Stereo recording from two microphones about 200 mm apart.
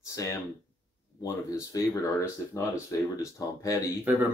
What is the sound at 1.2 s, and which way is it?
Speech, 15° left (ahead or behind).